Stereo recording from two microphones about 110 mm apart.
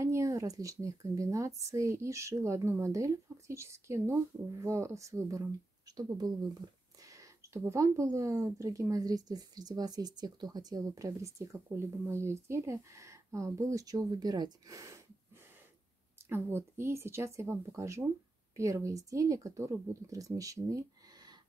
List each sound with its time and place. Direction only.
0.0 s speech: 25° right (ahead or behind)
16.3 s speech: 20° right (ahead or behind)